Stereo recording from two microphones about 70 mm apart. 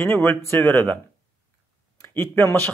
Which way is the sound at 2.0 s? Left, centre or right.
Left.